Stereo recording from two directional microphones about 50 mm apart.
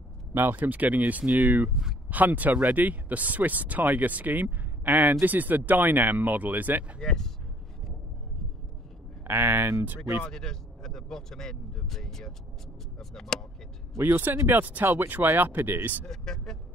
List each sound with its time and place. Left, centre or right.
0.3 s speech: right
1.7 s speech: centre
2.0 s speech: right
7.0 s speech: centre
9.2 s speech: right
10.3 s speech: centre
14.5 s speech: right
16.1 s speech: centre